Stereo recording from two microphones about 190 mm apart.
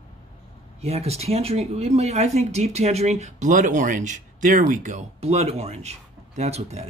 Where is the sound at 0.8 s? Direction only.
35° right (ahead or behind).